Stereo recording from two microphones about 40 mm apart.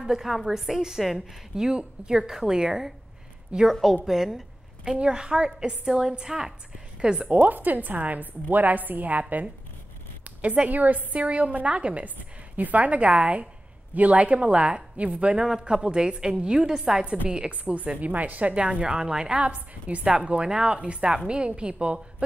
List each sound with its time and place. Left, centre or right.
0.0 s a woman's voice: centre
3.5 s a woman's voice: right
4.0 s a sound: centre
4.9 s a woman's voice: right
7.3 s a woman's voice: right
10.2 s a woman's voice: right
12.5 s a woman's voice: right
16.6 s a woman's voice: centre
17.0 s a woman's voice: right
18.5 s a woman's voice: right
19.4 s a woman's voice: right
20.2 s a woman's voice: right